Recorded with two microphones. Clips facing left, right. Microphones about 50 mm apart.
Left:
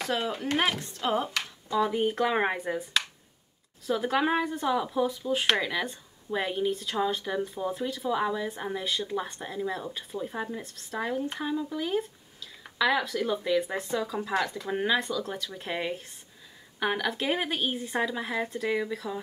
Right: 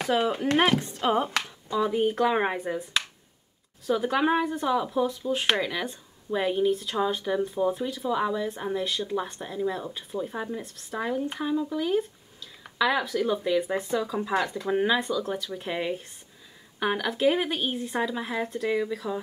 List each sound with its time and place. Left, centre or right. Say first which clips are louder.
0.0 s speech: right 5 dB; centre
1.0 s speech: right 2 dB; centre
1.7 s speech: right 1 dB; centre